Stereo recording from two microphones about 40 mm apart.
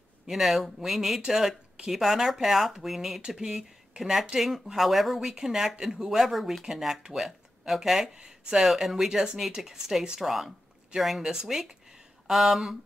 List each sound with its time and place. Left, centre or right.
0.3 s speech: centre
3.2 s speech: centre
8.6 s speech: centre
9.6 s speech: centre